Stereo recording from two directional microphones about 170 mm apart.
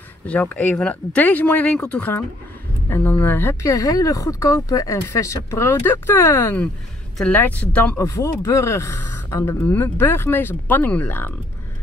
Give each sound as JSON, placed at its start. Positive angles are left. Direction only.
{"t": 0.3, "sound": "speech", "side_deg": 10}